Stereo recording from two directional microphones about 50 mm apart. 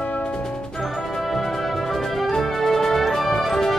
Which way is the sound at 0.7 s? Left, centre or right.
Centre.